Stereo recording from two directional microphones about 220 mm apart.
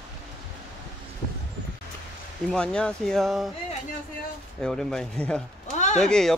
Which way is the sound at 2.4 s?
5° left (ahead or behind).